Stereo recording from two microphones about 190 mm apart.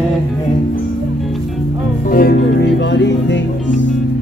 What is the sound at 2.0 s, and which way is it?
Music, 50° left (ahead or behind).